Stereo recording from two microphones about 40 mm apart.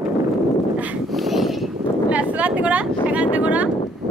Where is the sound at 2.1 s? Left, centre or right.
Right.